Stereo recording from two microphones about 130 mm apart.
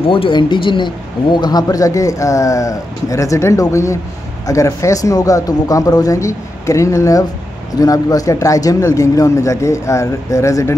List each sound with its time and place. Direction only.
0.0 s speech: 45° left (ahead or behind); by 10.7 s 25° left (ahead or behind)